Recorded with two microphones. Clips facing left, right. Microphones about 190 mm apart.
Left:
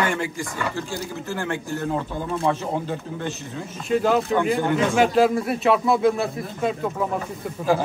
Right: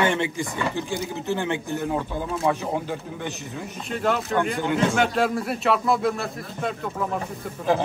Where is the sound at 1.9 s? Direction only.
5° right (ahead or behind).